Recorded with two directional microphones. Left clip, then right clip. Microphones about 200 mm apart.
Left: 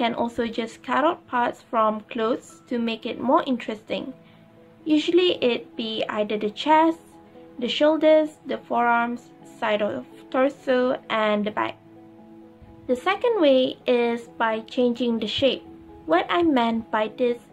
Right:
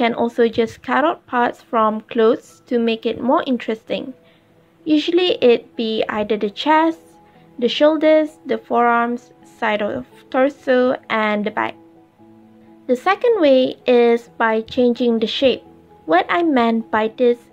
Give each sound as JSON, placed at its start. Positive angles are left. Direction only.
{"t": 0.0, "sound": "speech", "side_deg": -25}
{"t": 12.8, "sound": "speech", "side_deg": -20}